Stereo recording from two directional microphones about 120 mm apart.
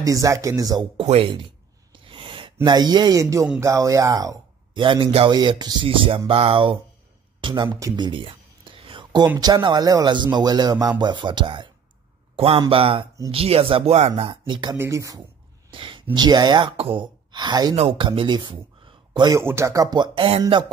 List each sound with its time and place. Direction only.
0.0 s speech: 25° right (ahead or behind)
1.9 s a sound: 45° right (ahead or behind); by 3.4 s 25° right (ahead or behind)
3.5 s speech: 25° right (ahead or behind)
4.7 s speech: 45° right (ahead or behind)
5.3 s speech: 35° right (ahead or behind)
7.3 s a sound: 45° right (ahead or behind)
9.4 s speech: 35° right (ahead or behind)
14.8 s speech: 25° right (ahead or behind)
15.7 s speech: 45° right (ahead or behind)
19.3 s speech: 25° right (ahead or behind); by 20.6 s 50° right (ahead or behind)